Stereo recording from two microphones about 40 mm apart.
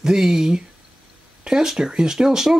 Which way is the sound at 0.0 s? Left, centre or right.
Centre.